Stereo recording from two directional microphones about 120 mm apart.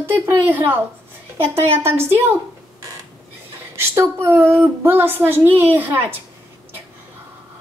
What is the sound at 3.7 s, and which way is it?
A woman's voice, 20° right (ahead or behind).